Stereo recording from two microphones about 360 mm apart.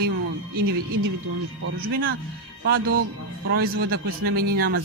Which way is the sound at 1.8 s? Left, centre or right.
Right.